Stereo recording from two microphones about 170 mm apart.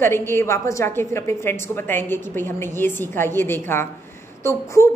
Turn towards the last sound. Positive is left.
turn(degrees=15)  # may be behind; listen again after turning